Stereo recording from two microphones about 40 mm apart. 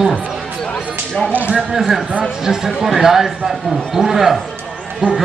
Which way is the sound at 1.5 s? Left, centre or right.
Centre.